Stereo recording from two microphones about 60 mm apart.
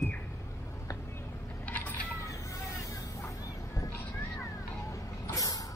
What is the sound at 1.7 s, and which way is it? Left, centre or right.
Vehicle, left.